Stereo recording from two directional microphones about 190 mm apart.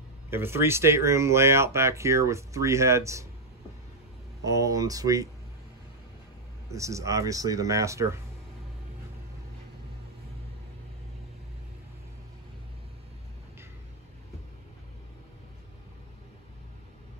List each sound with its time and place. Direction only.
0.3 s speech: 10° right (ahead or behind)
4.5 s speech: 15° right (ahead or behind)
6.7 s speech: 15° right (ahead or behind)